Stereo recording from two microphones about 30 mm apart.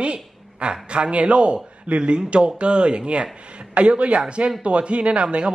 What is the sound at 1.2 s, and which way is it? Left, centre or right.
Speech, right.